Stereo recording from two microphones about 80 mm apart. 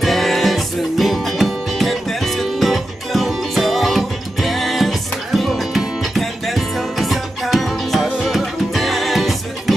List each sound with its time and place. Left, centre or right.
0.0 s music: centre